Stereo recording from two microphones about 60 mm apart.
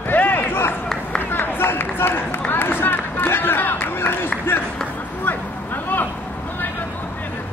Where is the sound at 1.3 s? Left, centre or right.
Left.